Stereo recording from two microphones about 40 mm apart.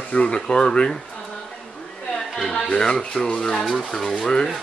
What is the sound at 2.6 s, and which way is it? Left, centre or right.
Speech, left.